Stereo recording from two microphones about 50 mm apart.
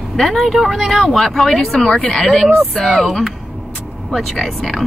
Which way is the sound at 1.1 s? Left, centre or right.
Centre.